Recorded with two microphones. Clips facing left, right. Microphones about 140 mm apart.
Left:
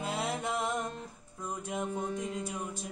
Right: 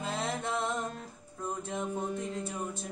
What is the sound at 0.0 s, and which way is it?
Music, 10° left (ahead or behind).